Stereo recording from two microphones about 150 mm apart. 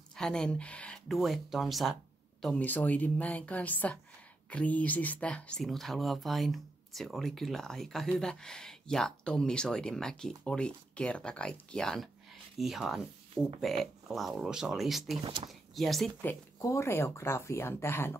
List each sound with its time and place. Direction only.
0.1 s speech: 5° left (ahead or behind)
16.2 s speech: 15° left (ahead or behind)